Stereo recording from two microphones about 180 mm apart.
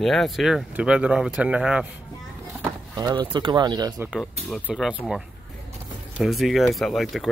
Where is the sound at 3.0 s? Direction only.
25° right (ahead or behind).